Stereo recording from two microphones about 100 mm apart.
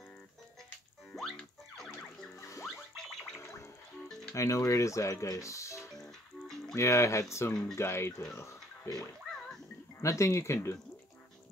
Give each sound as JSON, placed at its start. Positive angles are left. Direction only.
{"t": 1.1, "sound": "music", "side_deg": 5}
{"t": 2.3, "sound": "music", "side_deg": 30}
{"t": 3.0, "sound": "gargling", "side_deg": 5}
{"t": 4.4, "sound": "speech", "side_deg": 30}
{"t": 8.4, "sound": "music", "side_deg": 30}
{"t": 8.9, "sound": "music", "side_deg": 5}
{"t": 9.9, "sound": "speech", "side_deg": 30}